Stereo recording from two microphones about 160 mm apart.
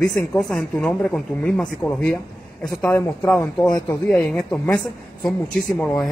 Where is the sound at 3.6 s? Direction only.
25° left (ahead or behind).